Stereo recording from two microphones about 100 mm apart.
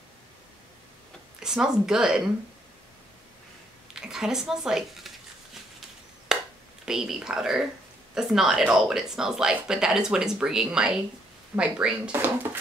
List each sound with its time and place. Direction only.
1.4 s speech: 5° right (ahead or behind)
3.9 s a sound: 5° right (ahead or behind)
6.9 s speech: 5° right (ahead or behind)
12.1 s speech: 20° right (ahead or behind)